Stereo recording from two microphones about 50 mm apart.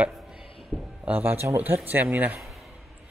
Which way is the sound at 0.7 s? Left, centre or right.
Left.